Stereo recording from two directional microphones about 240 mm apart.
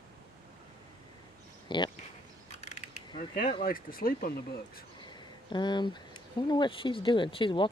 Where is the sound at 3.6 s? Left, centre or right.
Left.